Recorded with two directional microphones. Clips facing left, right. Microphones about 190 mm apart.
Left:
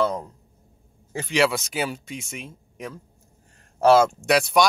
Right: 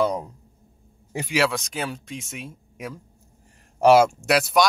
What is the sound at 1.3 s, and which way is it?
Speech, centre (ahead or behind).